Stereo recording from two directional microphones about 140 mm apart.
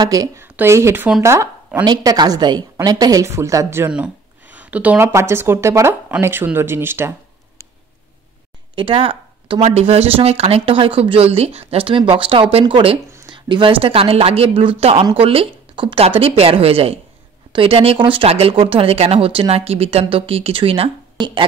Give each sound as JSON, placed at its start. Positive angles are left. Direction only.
{"t": 0.0, "sound": "a woman's voice", "side_deg": -25}
{"t": 8.7, "sound": "speech", "side_deg": -40}